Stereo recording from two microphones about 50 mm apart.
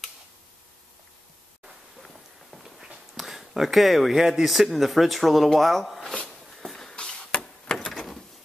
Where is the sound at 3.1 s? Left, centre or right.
Centre.